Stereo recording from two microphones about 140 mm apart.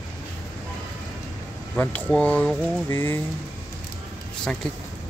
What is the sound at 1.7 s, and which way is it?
Speech, 10° left (ahead or behind).